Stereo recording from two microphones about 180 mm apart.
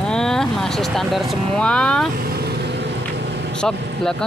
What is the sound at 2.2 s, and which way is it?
Vehicle, 60° right (ahead or behind).